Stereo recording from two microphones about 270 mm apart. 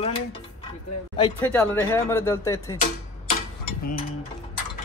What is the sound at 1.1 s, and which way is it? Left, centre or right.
Speech, centre.